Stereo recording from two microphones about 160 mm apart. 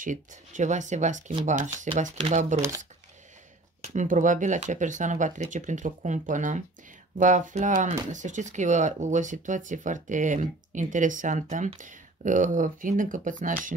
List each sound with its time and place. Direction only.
0.0 s speech: 55° right (ahead or behind)
3.8 s speech: 50° right (ahead or behind)